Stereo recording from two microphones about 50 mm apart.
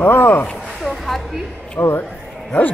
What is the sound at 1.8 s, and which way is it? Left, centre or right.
Speech, left.